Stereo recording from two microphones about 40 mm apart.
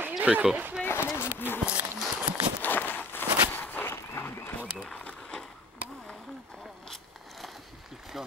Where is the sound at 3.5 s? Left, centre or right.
Left.